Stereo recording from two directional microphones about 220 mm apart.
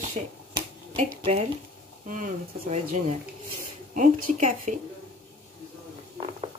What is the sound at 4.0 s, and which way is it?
Speech, 35° right (ahead or behind).